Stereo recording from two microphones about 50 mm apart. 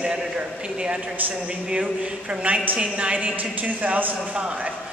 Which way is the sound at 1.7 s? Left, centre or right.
Right.